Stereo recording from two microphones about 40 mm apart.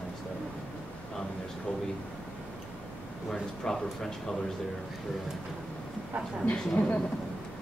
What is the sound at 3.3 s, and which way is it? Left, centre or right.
Speech, centre.